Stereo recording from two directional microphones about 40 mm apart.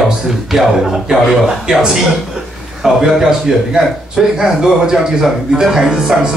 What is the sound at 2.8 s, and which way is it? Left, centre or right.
A man's voice, centre.